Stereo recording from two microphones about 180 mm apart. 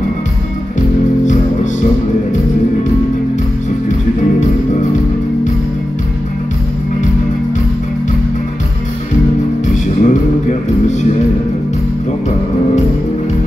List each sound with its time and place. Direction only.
0.7 s music: 45° left (ahead or behind)
10.0 s music: 40° left (ahead or behind)